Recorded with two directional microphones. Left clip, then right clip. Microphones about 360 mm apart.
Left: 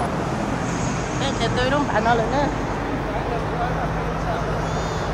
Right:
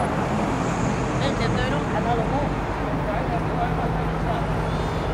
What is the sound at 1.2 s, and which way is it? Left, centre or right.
Vehicle, centre.